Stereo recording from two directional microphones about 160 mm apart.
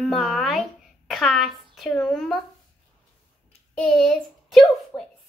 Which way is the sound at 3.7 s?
5° left (ahead or behind).